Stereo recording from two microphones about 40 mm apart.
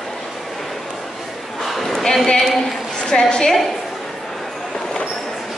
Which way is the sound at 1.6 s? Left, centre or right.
Centre.